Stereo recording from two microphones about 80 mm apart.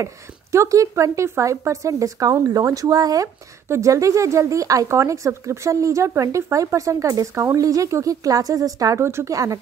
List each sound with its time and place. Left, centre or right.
0.0 s speech: right
3.6 s speech: right
9.0 s speech: right